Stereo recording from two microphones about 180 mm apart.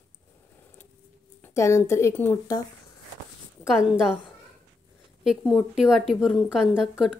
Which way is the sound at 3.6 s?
5° right (ahead or behind).